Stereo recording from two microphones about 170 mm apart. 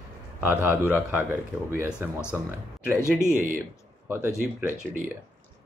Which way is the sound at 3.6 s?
15° right (ahead or behind).